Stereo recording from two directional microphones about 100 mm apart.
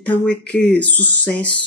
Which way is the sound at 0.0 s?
15° left (ahead or behind).